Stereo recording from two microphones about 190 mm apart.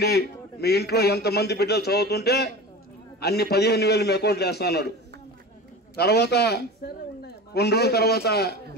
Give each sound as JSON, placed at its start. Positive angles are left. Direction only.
{"t": 0.0, "sound": "a man's voice", "side_deg": 55}
{"t": 5.9, "sound": "a man's voice", "side_deg": 60}